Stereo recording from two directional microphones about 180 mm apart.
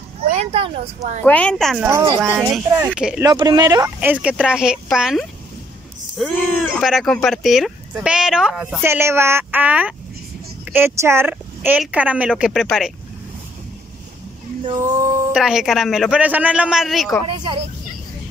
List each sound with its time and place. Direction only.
0.3 s speech: 35° right (ahead or behind)
1.2 s a man's voice: 5° left (ahead or behind)
2.0 s a woman's voice: 15° right (ahead or behind)
3.3 s a woman's voice: 20° right (ahead or behind); by 8.8 s 5° right (ahead or behind)
8.8 s a woman's voice: 15° right (ahead or behind)
15.3 s a man's voice: 5° right (ahead or behind)